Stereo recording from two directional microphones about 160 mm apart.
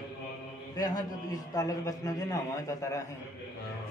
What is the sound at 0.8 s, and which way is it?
A man's voice, 25° left (ahead or behind).